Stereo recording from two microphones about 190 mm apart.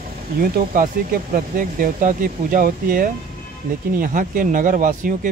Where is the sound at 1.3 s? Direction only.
45° right (ahead or behind).